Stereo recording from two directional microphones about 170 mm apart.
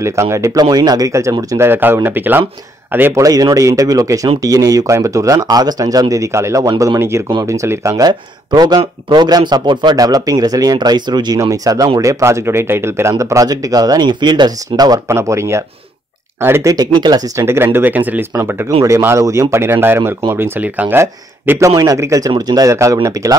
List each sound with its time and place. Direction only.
0.0 s speech: 15° right (ahead or behind)